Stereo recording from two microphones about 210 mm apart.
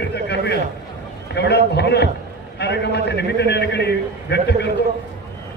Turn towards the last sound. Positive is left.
turn(degrees=55)  # may be behind; listen again after turning